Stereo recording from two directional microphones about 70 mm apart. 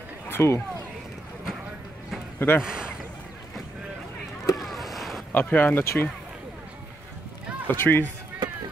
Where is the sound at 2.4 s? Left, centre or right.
Left.